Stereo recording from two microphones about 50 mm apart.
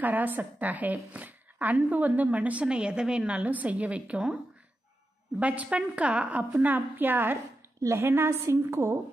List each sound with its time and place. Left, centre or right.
0.0 s a woman's voice: right
2.6 s a woman's voice: centre
5.4 s a woman's voice: right
7.9 s a woman's voice: right